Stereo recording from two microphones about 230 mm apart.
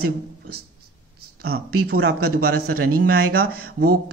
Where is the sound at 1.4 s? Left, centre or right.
Right.